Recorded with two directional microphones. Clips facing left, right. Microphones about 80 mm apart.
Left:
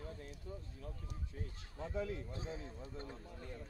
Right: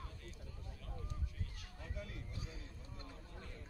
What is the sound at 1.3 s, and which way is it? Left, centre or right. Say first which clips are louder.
Speech: left 3 dB; left.